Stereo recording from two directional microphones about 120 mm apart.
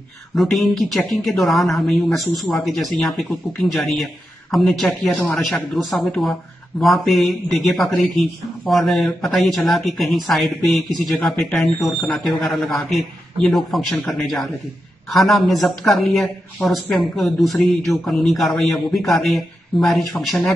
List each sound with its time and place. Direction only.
0.4 s speech: centre (ahead or behind)